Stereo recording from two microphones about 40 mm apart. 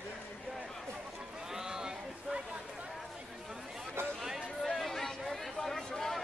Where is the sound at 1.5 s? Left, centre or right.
Centre.